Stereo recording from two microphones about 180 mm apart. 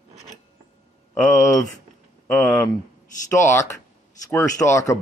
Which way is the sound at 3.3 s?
15° left (ahead or behind).